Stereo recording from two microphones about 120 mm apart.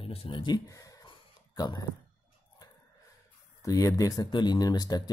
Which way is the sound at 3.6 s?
30° left (ahead or behind).